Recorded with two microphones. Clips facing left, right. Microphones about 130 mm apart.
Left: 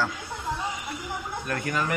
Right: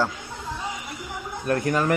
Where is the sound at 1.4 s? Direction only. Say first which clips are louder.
Right 8 dB; 40° right (ahead or behind).